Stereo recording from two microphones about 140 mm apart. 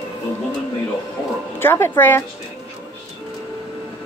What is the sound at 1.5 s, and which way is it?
Speech, 15° left (ahead or behind).